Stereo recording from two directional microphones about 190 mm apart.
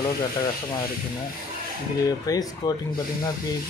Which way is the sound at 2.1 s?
20° left (ahead or behind).